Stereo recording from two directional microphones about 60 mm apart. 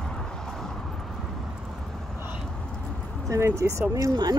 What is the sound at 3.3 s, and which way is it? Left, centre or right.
Speech, right.